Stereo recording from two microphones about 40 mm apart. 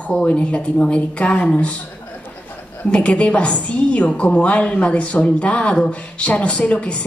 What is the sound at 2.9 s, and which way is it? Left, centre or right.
A woman's voice, left.